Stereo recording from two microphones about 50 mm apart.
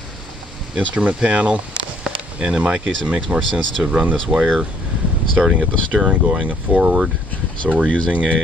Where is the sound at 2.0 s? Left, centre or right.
Centre.